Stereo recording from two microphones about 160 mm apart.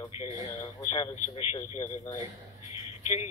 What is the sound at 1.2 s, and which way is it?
Speech, 35° left (ahead or behind).